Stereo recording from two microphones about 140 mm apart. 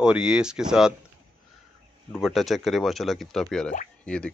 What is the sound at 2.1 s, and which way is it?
Speech, centre (ahead or behind).